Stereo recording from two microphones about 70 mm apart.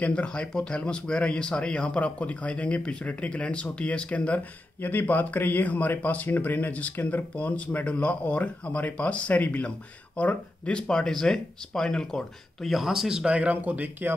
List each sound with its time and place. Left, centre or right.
0.0 s speech: centre; by 14.1 s right